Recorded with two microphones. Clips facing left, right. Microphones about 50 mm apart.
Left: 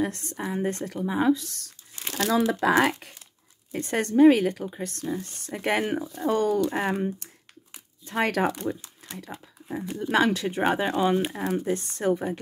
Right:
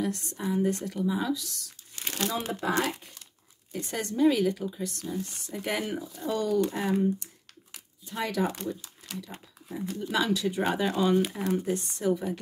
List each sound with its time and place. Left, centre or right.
0.0 s speech: left
2.1 s speech: left
3.7 s speech: left
5.5 s speech: left
9.7 s speech: left
10.1 s speech: left
11.5 s speech: left